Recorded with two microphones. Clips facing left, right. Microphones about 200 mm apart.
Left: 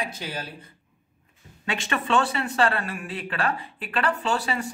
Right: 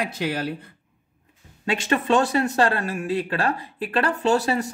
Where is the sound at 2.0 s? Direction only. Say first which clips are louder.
Right 3 dB; 40° right (ahead or behind).